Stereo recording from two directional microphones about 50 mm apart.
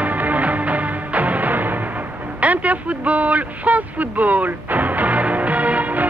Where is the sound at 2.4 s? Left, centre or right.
Right.